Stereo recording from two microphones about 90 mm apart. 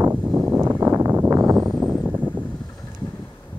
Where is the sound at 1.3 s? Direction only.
40° right (ahead or behind).